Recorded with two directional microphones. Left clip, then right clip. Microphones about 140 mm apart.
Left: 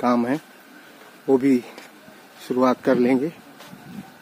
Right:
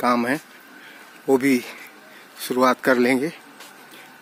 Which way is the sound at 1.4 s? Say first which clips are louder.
Even; 5° left (ahead or behind).